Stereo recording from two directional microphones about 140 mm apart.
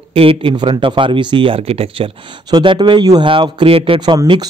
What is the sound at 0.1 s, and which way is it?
Speech, 40° right (ahead or behind).